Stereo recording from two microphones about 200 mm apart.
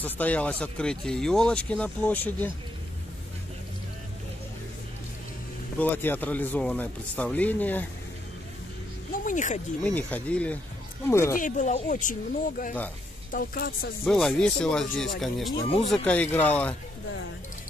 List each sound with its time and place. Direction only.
0.0 s speech: 10° left (ahead or behind)
5.8 s speech: 10° left (ahead or behind)
9.2 s speech: 40° left (ahead or behind)
9.8 s speech: 5° left (ahead or behind)
11.3 s a woman's voice: 40° left (ahead or behind)
14.0 s speech: centre (ahead or behind)